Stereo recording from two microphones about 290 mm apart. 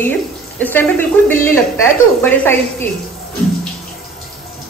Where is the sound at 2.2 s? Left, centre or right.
Centre.